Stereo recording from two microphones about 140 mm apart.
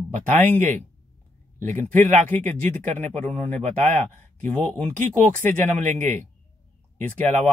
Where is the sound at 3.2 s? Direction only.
10° left (ahead or behind).